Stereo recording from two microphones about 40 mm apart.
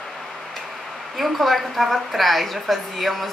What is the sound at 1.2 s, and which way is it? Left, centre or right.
A woman's voice, centre.